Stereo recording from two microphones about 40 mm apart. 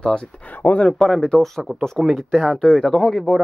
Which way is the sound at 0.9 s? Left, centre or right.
Centre.